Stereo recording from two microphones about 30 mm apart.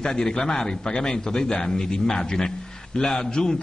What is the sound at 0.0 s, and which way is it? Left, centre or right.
A man's voice, left.